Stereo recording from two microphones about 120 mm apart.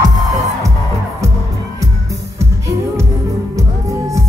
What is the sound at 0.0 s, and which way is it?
Music, 30° right (ahead or behind).